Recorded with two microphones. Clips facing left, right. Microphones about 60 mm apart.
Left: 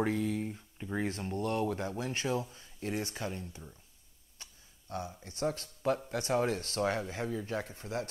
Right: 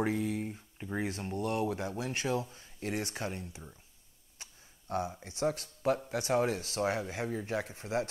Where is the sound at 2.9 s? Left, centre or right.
Right.